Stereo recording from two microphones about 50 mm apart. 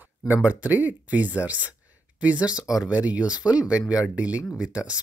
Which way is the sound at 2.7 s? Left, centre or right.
Centre.